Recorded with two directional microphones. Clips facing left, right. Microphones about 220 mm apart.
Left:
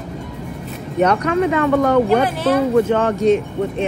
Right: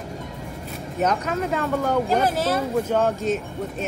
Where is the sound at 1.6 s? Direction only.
75° left (ahead or behind).